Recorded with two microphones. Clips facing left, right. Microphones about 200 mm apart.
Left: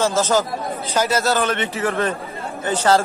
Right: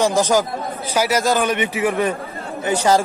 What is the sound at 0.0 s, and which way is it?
Speech, 15° right (ahead or behind).